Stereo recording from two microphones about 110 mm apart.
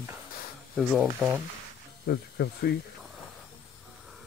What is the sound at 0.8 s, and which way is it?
Speech, 5° right (ahead or behind).